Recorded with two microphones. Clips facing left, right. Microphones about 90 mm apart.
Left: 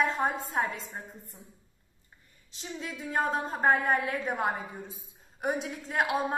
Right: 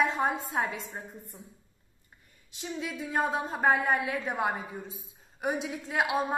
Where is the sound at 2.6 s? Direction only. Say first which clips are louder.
Right 3 dB; 10° right (ahead or behind).